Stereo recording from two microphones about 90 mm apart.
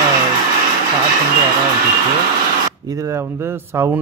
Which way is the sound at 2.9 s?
35° right (ahead or behind).